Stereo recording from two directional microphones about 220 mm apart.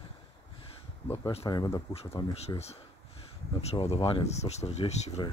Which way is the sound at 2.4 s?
30° left (ahead or behind).